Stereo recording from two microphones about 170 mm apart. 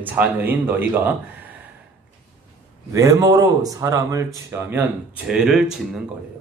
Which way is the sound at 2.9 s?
20° right (ahead or behind).